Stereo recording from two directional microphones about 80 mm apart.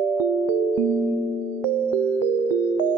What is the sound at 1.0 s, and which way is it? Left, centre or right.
Music, right.